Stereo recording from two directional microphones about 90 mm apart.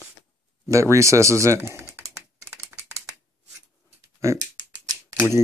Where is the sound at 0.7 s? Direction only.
35° right (ahead or behind).